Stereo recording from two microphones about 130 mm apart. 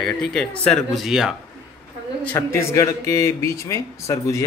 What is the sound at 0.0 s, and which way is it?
Speech, 5° left (ahead or behind).